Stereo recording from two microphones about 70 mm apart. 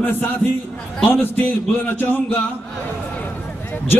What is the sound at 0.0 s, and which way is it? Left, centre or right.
A man's voice, left.